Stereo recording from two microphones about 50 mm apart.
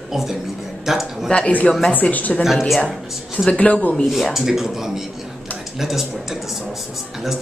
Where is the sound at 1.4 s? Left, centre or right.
Left.